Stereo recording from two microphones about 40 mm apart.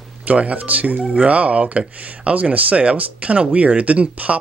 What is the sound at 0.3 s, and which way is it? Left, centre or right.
Speech, right.